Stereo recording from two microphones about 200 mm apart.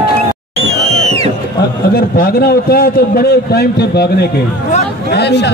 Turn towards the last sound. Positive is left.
turn(degrees=55)  # may be behind; listen again after turning